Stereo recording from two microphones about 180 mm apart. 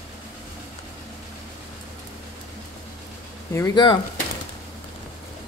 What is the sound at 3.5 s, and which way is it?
Speech, 20° left (ahead or behind).